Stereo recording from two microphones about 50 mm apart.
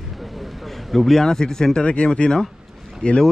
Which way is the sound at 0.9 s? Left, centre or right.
Centre.